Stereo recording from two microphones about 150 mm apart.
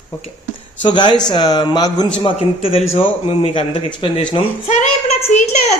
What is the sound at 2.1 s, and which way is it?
A man's voice, 40° left (ahead or behind).